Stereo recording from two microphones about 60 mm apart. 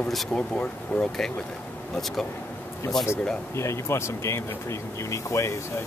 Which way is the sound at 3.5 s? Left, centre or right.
Left.